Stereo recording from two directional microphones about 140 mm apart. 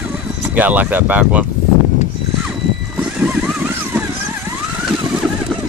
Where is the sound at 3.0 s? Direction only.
5° right (ahead or behind).